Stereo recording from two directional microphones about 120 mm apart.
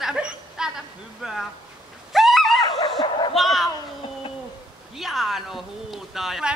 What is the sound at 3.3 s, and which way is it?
Bow-wow, centre (ahead or behind).